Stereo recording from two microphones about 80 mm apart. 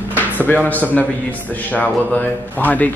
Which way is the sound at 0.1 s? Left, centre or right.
Left.